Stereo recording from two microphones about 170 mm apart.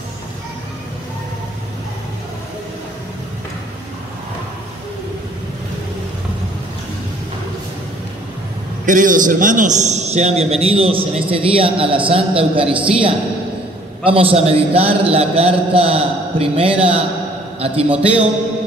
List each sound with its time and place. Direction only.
8.8 s a man's voice: 50° right (ahead or behind); by 17.0 s 35° right (ahead or behind)
17.8 s a man's voice: 5° right (ahead or behind)